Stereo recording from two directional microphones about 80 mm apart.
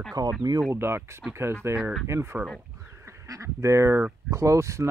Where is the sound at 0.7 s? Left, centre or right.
Right.